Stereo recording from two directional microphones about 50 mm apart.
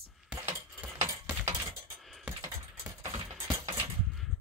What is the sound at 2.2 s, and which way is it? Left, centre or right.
Typing, right.